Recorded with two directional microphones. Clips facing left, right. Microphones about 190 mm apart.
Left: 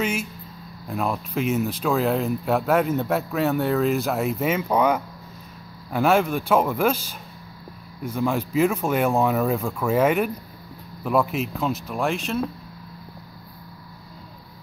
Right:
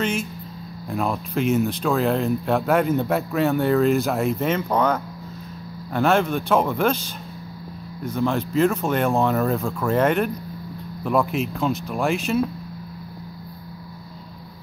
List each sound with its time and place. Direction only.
0.0 s speech: 5° left (ahead or behind)